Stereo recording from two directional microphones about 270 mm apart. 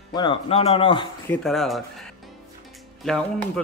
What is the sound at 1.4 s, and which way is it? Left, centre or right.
Speech, centre.